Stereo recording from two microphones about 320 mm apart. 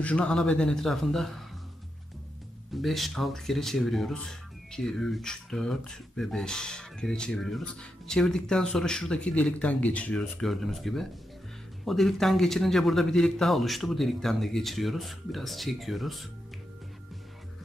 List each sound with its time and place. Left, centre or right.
0.0 s speech: centre
2.7 s speech: centre